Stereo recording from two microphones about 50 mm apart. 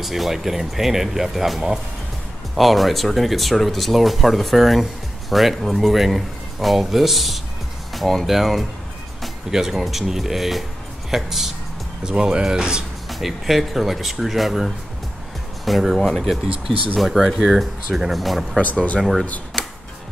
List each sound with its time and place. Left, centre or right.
0.0 s speech: centre
13.1 s speech: centre
18.6 s speech: left
18.9 s speech: centre